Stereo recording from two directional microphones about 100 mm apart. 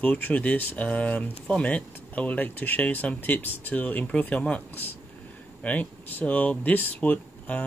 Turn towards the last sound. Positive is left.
turn(degrees=15)  # may be behind; listen again after turning